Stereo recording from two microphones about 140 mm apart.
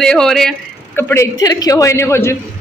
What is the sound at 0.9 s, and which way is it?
A man's voice, 20° left (ahead or behind).